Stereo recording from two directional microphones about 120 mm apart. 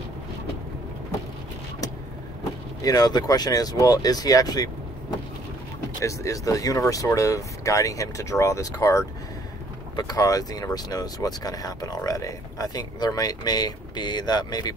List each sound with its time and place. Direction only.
2.8 s speech: 30° left (ahead or behind)
5.9 s speech: 25° left (ahead or behind)